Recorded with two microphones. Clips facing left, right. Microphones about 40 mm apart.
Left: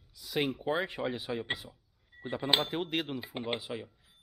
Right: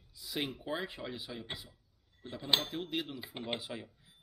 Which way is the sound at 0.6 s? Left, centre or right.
Left.